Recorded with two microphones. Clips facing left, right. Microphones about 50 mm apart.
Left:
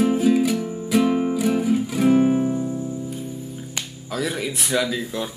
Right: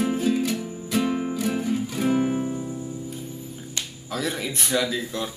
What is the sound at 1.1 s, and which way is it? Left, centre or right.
Music, centre.